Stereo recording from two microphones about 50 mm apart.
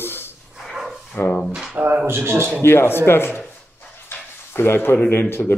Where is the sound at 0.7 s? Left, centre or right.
Centre.